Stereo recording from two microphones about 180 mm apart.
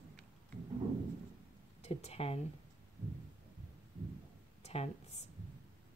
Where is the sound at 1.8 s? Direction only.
35° left (ahead or behind).